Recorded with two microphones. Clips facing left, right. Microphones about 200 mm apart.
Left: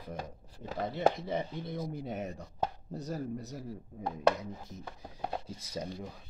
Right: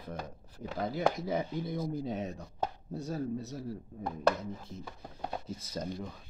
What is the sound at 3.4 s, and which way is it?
Speech, 15° left (ahead or behind).